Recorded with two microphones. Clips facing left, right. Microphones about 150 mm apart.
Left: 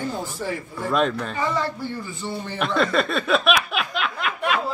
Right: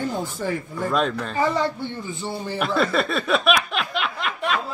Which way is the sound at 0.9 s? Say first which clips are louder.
Left 2 dB; centre (ahead or behind).